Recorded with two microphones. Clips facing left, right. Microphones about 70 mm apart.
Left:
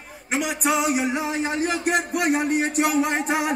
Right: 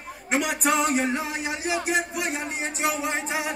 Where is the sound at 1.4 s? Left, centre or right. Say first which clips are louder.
Left 4 dB; left.